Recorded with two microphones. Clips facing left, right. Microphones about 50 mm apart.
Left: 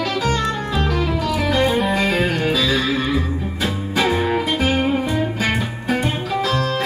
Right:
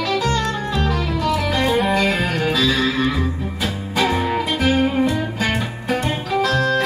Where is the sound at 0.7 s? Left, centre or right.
Centre.